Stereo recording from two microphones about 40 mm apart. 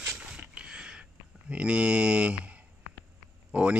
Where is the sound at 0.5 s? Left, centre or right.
Right.